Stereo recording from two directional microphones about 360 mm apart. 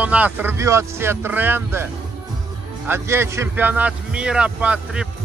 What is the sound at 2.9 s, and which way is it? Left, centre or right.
Speech, centre.